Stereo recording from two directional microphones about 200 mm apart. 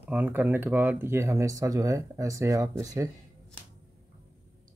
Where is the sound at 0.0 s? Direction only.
10° right (ahead or behind).